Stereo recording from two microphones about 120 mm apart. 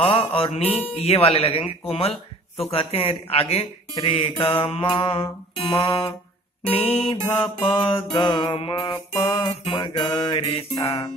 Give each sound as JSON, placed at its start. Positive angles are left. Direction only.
{"t": 0.0, "sound": "speech", "side_deg": 50}
{"t": 6.7, "sound": "music", "side_deg": 55}
{"t": 7.1, "sound": "speech", "side_deg": 40}